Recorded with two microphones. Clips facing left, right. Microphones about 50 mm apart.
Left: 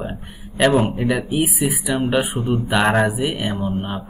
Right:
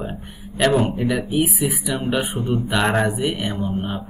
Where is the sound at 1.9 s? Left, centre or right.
Centre.